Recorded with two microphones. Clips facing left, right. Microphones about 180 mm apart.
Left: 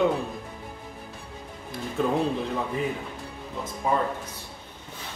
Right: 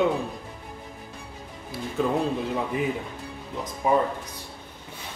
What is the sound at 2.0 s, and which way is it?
Speech, centre (ahead or behind).